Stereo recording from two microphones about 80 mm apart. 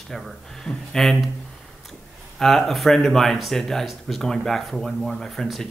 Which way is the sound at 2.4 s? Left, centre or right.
Centre.